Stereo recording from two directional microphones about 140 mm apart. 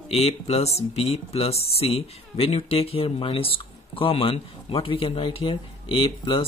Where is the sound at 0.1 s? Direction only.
45° left (ahead or behind).